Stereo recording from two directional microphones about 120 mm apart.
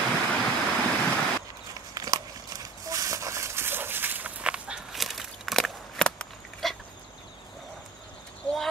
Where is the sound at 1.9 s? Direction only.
30° right (ahead or behind); by 6.7 s 5° left (ahead or behind).